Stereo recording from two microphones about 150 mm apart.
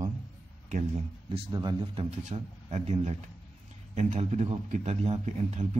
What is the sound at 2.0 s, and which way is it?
A man's voice, 50° right (ahead or behind).